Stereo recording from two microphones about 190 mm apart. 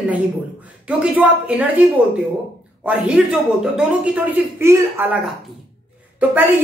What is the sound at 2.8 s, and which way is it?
A woman's voice, 5° right (ahead or behind).